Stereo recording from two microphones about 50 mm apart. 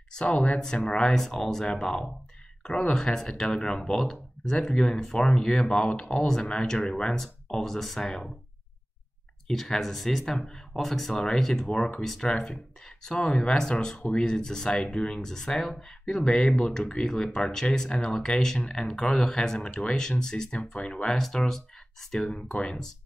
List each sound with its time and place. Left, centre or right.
0.1 s speech: left
9.5 s speech: centre
13.2 s speech: left
20.5 s speech: left